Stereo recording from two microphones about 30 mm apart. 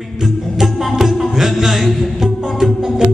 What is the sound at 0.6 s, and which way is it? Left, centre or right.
Music, centre.